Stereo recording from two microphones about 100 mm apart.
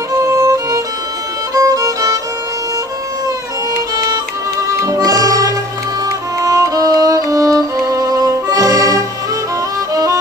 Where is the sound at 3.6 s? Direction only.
40° right (ahead or behind).